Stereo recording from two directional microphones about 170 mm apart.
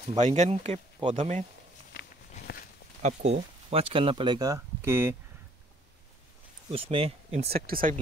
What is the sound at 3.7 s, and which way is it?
Speech, 35° right (ahead or behind).